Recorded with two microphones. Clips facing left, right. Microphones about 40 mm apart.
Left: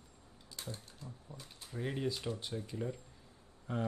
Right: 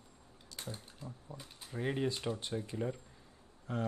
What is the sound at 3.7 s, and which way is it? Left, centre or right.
Speech, centre.